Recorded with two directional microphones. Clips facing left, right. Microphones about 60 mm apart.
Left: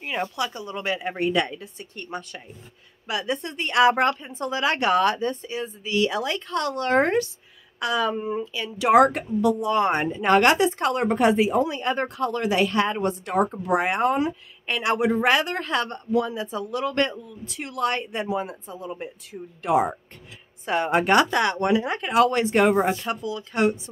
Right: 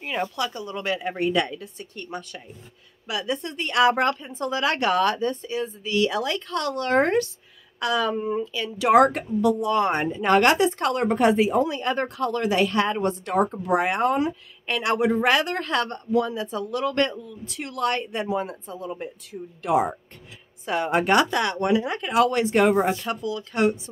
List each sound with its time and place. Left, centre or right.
0.0 s speech: centre
0.5 s a woman's voice: left
6.4 s a woman's voice: left
7.8 s a woman's voice: centre
19.2 s a woman's voice: left
22.0 s a woman's voice: left; by 23.7 s centre